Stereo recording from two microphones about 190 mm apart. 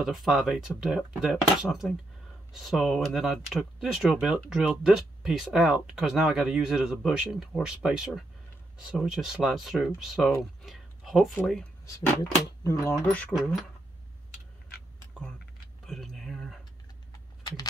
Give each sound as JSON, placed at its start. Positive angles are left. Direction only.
{"t": 0.0, "sound": "speech", "side_deg": 0}
{"t": 11.8, "sound": "speech", "side_deg": 15}
{"t": 15.9, "sound": "a sound", "side_deg": 0}